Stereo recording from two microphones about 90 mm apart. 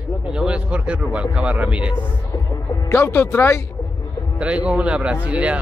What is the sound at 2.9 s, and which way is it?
Speech, 25° left (ahead or behind).